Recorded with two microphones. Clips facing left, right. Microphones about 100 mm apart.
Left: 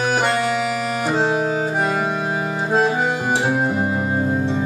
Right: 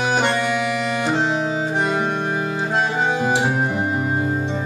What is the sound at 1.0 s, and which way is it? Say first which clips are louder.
Music: left 3 dB; 10° left (ahead or behind).